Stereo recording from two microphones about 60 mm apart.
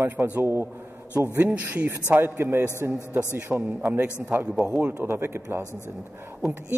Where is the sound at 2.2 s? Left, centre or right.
Right.